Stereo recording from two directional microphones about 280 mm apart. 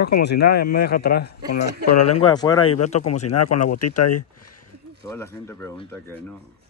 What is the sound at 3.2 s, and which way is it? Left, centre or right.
Speech, left.